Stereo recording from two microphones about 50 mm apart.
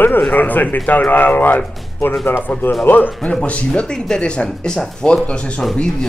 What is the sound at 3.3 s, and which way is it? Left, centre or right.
Speech, left.